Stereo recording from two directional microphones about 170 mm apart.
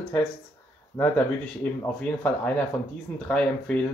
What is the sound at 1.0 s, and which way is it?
Speech, 15° left (ahead or behind).